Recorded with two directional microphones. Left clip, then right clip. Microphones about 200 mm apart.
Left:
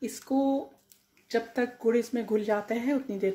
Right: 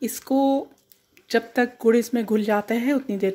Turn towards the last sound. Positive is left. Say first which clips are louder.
# right 5 dB
turn(degrees=-35)  # may be behind; listen again after turning